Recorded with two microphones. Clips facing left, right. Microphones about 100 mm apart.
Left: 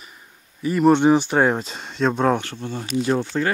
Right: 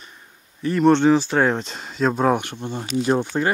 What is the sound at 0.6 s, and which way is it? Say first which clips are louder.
Speech: even; 5° left (ahead or behind).